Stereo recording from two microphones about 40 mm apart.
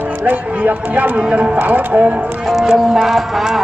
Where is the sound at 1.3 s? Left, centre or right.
Right.